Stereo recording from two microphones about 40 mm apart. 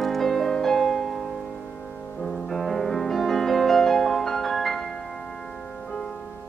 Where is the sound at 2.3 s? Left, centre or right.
Centre.